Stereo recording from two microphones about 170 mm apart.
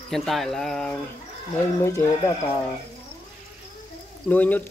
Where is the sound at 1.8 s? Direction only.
15° left (ahead or behind).